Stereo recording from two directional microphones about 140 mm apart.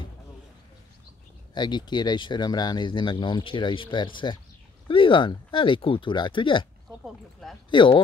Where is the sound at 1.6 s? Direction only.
30° left (ahead or behind).